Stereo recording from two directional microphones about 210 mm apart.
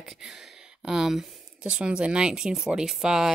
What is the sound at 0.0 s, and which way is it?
A woman's voice, centre (ahead or behind).